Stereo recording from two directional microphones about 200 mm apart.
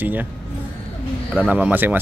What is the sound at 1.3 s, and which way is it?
Speech, 5° right (ahead or behind).